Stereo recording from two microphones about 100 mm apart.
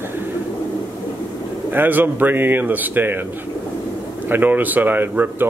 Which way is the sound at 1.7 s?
20° right (ahead or behind).